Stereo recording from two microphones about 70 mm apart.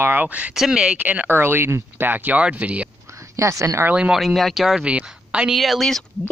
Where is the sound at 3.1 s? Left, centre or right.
Right.